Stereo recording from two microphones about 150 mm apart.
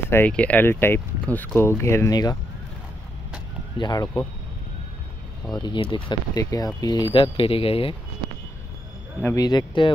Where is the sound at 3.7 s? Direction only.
30° left (ahead or behind).